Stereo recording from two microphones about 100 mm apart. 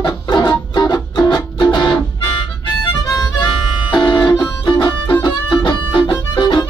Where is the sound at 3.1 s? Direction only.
35° left (ahead or behind).